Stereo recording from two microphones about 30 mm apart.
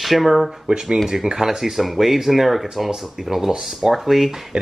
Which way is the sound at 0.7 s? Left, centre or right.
Right.